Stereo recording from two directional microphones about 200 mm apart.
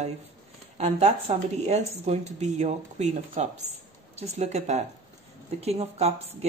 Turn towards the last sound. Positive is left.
turn(degrees=-30)  # may be behind; listen again after turning